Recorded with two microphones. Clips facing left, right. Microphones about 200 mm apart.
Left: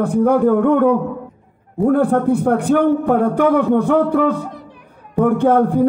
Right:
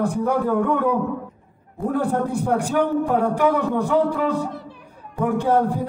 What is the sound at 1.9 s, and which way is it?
A man's voice, 60° left (ahead or behind).